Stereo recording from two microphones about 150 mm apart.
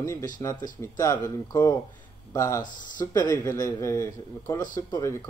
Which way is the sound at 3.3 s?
15° left (ahead or behind).